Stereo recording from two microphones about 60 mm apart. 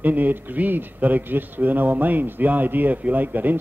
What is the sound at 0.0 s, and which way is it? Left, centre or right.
Speech, right.